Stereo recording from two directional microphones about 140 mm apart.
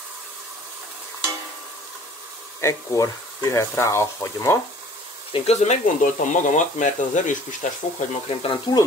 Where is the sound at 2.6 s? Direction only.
20° left (ahead or behind).